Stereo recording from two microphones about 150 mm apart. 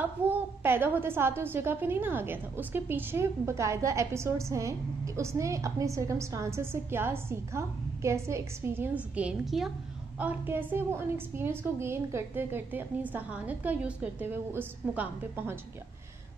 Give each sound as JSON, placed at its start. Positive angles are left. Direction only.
{"t": 0.0, "sound": "a woman's voice", "side_deg": -15}